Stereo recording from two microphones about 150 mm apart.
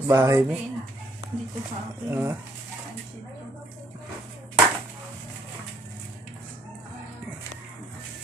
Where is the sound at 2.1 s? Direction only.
15° right (ahead or behind).